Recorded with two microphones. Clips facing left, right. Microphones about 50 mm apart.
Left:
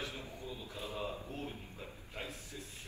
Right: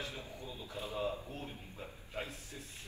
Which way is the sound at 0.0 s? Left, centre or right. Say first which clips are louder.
Left 1 dB; left.